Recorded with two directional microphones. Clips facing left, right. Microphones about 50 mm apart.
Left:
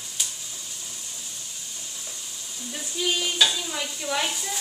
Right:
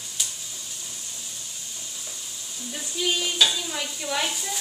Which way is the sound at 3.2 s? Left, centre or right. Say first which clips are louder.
Even; centre.